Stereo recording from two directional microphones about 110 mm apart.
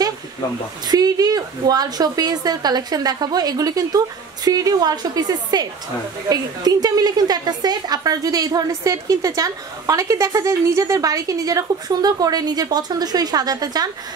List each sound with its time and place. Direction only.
0.8 s a woman's voice: 35° right (ahead or behind)